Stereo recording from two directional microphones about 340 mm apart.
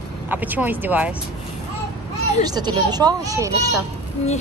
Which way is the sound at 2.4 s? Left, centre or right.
Centre.